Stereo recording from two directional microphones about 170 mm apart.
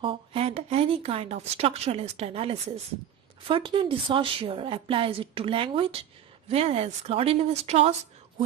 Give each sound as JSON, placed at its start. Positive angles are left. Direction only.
{"t": 0.0, "sound": "speech", "side_deg": -30}